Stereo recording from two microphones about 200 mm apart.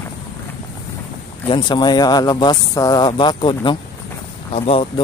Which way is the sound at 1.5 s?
25° left (ahead or behind).